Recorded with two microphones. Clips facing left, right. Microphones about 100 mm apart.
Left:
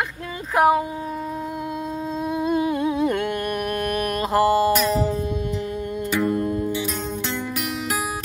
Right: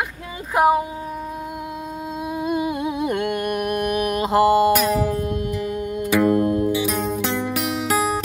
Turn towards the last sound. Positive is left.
turn(degrees=-5)  # may be behind; listen again after turning